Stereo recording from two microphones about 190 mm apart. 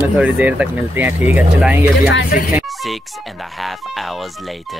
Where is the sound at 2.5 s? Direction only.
5° right (ahead or behind).